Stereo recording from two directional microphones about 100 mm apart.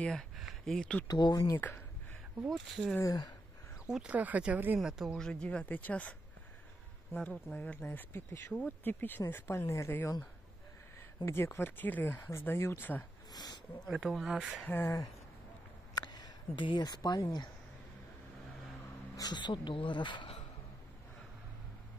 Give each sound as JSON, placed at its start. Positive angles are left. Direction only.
{"t": 0.0, "sound": "speech", "side_deg": 5}
{"t": 1.0, "sound": "speech", "side_deg": 40}
{"t": 1.6, "sound": "speech", "side_deg": 30}
{"t": 2.4, "sound": "speech", "side_deg": 0}
{"t": 3.0, "sound": "speech", "side_deg": 40}
{"t": 3.8, "sound": "speech", "side_deg": -10}
{"t": 4.7, "sound": "speech", "side_deg": -5}
{"t": 11.2, "sound": "speech", "side_deg": 25}
{"t": 13.3, "sound": "speech", "side_deg": 40}
{"t": 13.8, "sound": "speech", "side_deg": 0}
{"t": 15.9, "sound": "speech", "side_deg": 45}
{"t": 19.1, "sound": "speech", "side_deg": 45}